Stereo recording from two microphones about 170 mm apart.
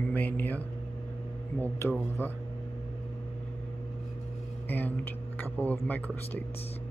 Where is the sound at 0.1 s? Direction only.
10° left (ahead or behind).